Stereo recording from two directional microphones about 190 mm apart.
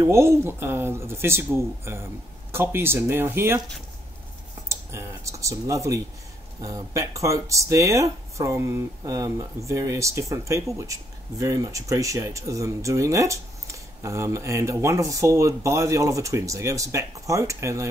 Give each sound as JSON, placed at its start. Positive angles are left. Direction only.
{"t": 0.0, "sound": "speech", "side_deg": -15}
{"t": 4.6, "sound": "speech", "side_deg": -15}